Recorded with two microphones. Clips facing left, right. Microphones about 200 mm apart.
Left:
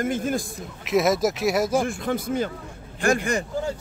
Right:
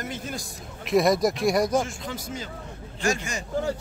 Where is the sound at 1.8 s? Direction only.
55° left (ahead or behind).